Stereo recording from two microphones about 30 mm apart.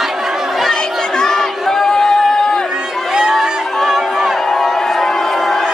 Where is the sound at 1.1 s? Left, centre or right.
Centre.